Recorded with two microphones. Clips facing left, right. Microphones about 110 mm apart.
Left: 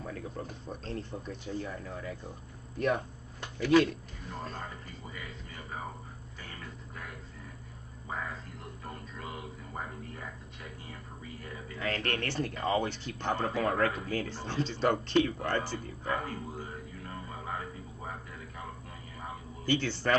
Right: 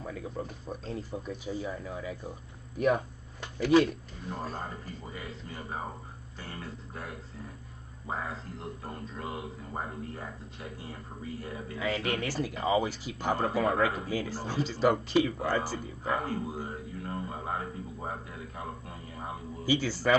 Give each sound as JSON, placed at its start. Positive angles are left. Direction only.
{"t": 0.0, "sound": "a man's voice", "side_deg": -5}
{"t": 3.6, "sound": "a man's voice", "side_deg": -10}
{"t": 4.6, "sound": "a man's voice", "side_deg": -35}
{"t": 11.8, "sound": "a man's voice", "side_deg": -5}
{"t": 16.3, "sound": "a sound", "side_deg": -35}
{"t": 19.6, "sound": "a man's voice", "side_deg": -5}